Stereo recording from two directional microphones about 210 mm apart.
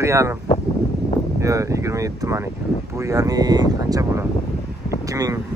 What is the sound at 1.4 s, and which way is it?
A man's voice, 15° right (ahead or behind).